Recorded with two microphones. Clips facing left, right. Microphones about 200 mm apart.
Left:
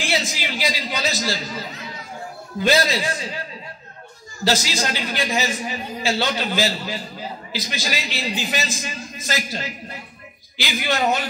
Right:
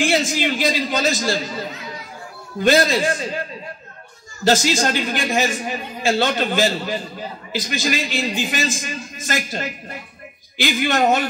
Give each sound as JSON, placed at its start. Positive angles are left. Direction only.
{"t": 0.0, "sound": "a man's voice", "side_deg": -50}
{"t": 4.5, "sound": "a man's voice", "side_deg": -50}